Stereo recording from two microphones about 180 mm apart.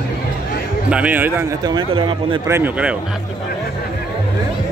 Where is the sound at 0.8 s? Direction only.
5° right (ahead or behind).